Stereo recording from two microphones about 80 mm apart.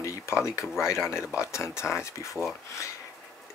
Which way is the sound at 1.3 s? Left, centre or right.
Left.